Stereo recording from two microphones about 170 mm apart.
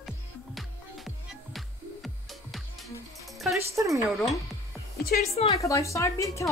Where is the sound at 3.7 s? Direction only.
20° right (ahead or behind).